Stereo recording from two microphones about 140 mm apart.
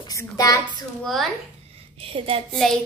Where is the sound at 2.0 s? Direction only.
40° right (ahead or behind).